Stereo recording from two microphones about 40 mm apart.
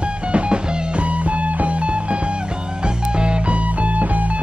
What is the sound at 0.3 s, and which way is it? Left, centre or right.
Music, right.